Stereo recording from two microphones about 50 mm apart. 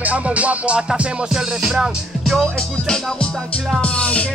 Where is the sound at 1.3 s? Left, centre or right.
Centre.